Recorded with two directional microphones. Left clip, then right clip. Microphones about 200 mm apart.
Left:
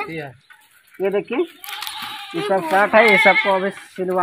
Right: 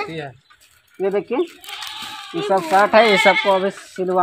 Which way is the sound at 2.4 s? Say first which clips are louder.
Right 2 dB; 10° left (ahead or behind).